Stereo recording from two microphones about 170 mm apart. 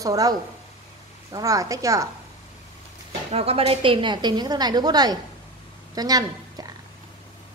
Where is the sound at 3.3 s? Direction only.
35° right (ahead or behind).